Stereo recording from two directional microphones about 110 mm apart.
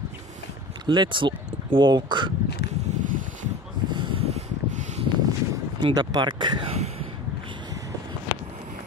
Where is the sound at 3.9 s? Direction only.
45° right (ahead or behind).